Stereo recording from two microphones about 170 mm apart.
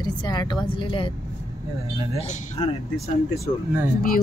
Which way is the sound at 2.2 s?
40° left (ahead or behind).